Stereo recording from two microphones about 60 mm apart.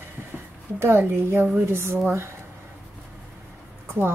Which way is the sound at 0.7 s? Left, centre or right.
Right.